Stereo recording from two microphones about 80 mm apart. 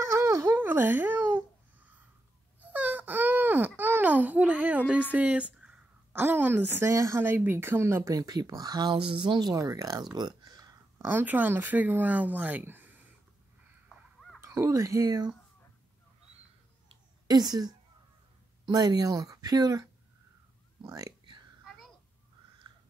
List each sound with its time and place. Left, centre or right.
0.0 s a sound: right
0.6 s babbling: right
2.6 s wail: right
5.1 s a sound: centre
6.1 s speech: right
6.9 s speech: right
8.1 s speech: right
9.5 s speech: right
10.1 s speech: right
11.1 s speech: right
14.4 s speech: right
17.3 s speech: right
20.8 s speech: right